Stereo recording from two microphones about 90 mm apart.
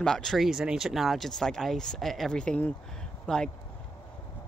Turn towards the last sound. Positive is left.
turn(degrees=5)  # may be behind; listen again after turning